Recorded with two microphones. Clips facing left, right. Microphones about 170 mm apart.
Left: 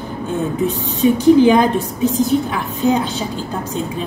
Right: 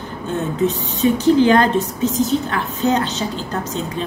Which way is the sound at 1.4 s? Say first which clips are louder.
Left 2 dB; 10° left (ahead or behind).